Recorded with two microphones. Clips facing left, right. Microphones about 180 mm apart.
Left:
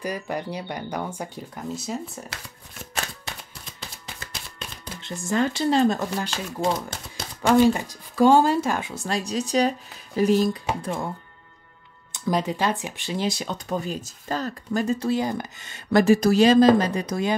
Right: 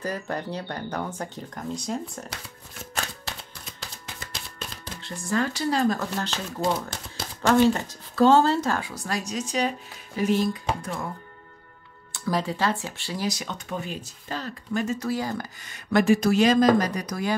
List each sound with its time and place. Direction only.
0.0 s speech: 10° left (ahead or behind)
5.3 s speech: 25° left (ahead or behind)
6.0 s speech: 10° left (ahead or behind)
9.3 s speech: 35° left (ahead or behind)
12.1 s speech: 20° left (ahead or behind)